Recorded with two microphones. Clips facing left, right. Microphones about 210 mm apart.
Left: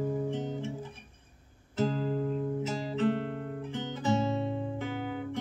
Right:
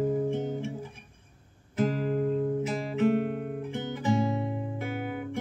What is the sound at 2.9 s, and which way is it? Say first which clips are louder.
Guitar: right 5 dB; 10° right (ahead or behind).